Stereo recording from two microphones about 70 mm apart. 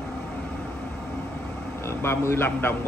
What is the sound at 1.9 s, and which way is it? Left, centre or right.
Speech, left.